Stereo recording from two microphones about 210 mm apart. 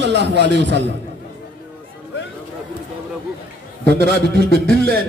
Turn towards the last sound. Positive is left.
turn(degrees=-50)  # may be behind; listen again after turning